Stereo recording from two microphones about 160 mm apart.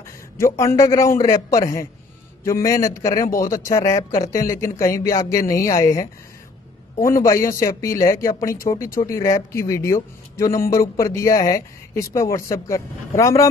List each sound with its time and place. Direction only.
0.4 s speech: 20° left (ahead or behind)